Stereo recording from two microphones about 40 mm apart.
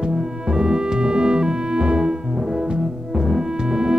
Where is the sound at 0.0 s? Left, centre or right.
Centre.